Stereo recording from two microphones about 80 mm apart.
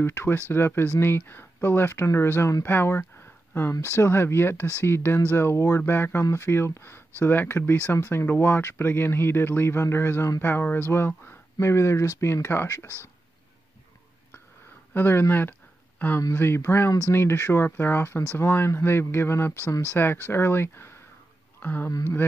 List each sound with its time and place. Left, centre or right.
0.0 s speech: left
15.0 s speech: left